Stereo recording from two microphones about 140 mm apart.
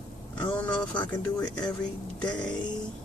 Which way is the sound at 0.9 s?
10° left (ahead or behind).